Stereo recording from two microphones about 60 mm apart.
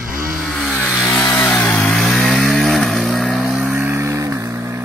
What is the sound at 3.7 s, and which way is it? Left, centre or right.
Vehicle, right.